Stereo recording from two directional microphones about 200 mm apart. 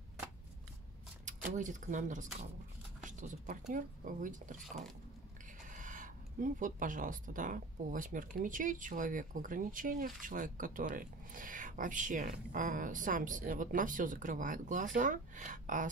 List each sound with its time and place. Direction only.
1.5 s speech: 40° right (ahead or behind)
3.0 s a sound: 40° right (ahead or behind)
3.7 s speech: 40° right (ahead or behind)
5.8 s speech: 40° right (ahead or behind)